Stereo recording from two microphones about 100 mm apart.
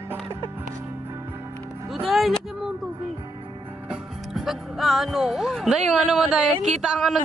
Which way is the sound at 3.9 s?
5° right (ahead or behind).